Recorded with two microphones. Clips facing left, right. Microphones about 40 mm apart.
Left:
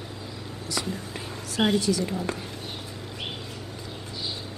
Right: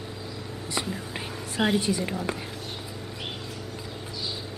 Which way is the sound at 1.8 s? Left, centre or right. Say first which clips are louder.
Left 2 dB; right.